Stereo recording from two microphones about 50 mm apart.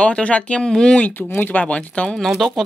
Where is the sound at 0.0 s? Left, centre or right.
Left.